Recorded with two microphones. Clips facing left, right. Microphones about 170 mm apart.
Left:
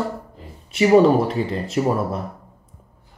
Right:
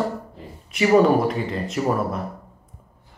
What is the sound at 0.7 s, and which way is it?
Speech, 30° left (ahead or behind).